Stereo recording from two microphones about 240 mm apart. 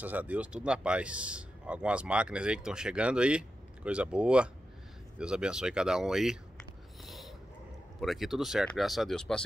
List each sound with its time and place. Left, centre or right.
0.0 s a man's voice: centre
7.1 s dog: centre
8.0 s a man's voice: centre